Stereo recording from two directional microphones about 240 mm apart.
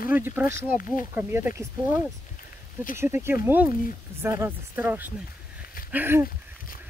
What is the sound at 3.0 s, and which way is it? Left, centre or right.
Speech, centre.